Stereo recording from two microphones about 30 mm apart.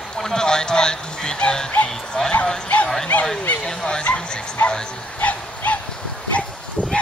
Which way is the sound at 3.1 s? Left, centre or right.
Left.